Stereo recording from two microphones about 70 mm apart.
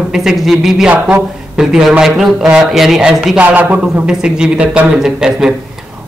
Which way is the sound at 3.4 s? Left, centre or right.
Right.